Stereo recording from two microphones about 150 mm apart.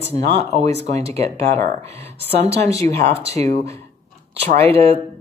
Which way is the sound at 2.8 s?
55° right (ahead or behind).